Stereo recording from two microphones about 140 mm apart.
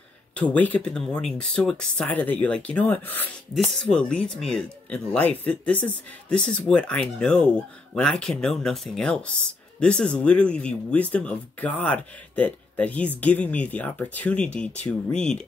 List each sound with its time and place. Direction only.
0.4 s speech: 10° left (ahead or behind)